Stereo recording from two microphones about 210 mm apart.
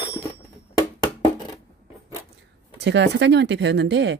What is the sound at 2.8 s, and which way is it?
Speech, 55° right (ahead or behind).